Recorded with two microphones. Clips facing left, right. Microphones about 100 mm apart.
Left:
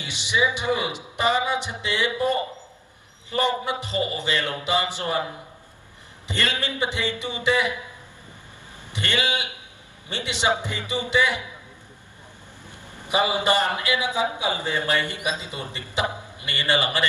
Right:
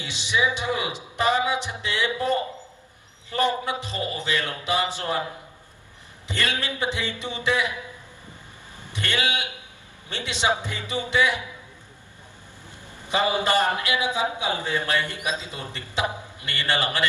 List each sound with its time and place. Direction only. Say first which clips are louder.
0.0 s a man's voice: left 1 dB; 15° left (ahead or behind)
3.3 s a man's voice: even; 20° left (ahead or behind)
6.2 s a man's voice: left 1 dB; 20° left (ahead or behind)
8.9 s a man's voice: left 1 dB; 20° left (ahead or behind)
12.9 s a man's voice: left 1 dB; 15° left (ahead or behind)